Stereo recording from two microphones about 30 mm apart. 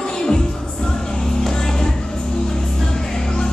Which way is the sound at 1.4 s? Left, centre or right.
Centre.